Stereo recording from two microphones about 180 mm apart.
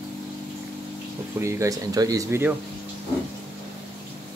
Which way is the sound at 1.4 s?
15° right (ahead or behind).